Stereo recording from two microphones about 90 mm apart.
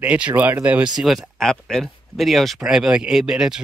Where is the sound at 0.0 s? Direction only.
15° right (ahead or behind).